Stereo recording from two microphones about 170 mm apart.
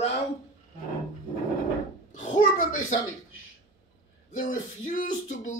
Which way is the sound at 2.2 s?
50° left (ahead or behind).